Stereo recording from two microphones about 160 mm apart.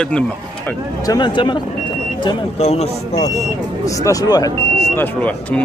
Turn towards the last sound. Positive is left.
turn(degrees=10)  # may be behind; listen again after turning